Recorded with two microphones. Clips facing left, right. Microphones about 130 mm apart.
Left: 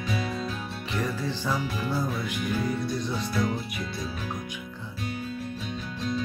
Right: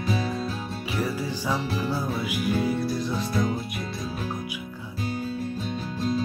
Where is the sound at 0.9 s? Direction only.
10° right (ahead or behind).